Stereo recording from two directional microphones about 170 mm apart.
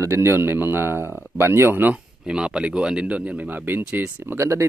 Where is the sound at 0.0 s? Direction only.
15° right (ahead or behind).